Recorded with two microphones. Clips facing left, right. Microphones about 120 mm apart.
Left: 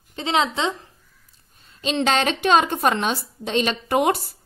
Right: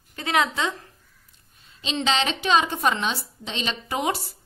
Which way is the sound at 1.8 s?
50° left (ahead or behind).